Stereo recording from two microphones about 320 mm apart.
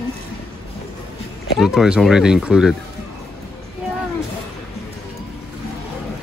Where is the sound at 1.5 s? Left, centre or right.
Centre.